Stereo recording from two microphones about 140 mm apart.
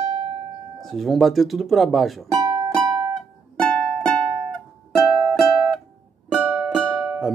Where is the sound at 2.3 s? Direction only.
25° right (ahead or behind).